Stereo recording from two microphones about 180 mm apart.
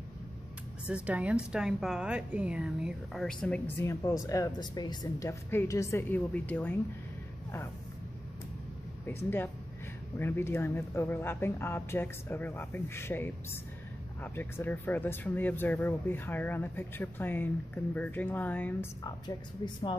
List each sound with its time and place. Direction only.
0.8 s a woman's voice: 5° right (ahead or behind); by 6.8 s 10° left (ahead or behind)
9.0 s a woman's voice: 10° left (ahead or behind)
19.0 s speech: 25° left (ahead or behind)